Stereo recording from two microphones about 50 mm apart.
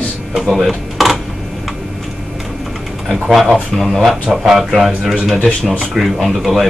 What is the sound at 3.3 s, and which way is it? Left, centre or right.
Speech, centre.